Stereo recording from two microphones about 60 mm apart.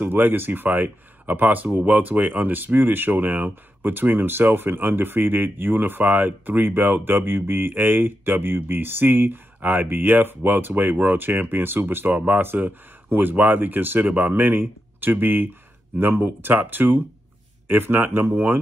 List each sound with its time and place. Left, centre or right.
0.0 s speech: right